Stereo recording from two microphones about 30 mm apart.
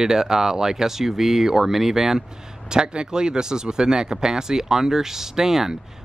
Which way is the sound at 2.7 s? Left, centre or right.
Right.